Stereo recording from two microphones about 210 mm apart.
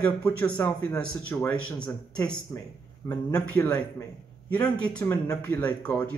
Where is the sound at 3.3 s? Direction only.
10° left (ahead or behind).